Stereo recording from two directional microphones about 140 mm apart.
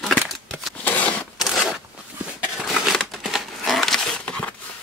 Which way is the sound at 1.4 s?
Centre (ahead or behind).